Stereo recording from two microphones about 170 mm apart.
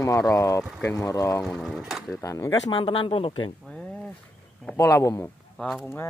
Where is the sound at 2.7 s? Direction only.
30° left (ahead or behind).